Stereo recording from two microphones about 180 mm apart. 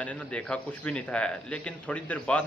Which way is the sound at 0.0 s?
5° left (ahead or behind).